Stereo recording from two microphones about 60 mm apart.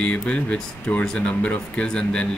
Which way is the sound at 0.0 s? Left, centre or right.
Centre.